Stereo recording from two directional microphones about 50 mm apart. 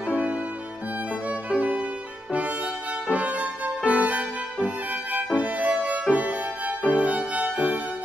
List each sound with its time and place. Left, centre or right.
0.0 s music: right
1.5 s violin: right
2.3 s music: right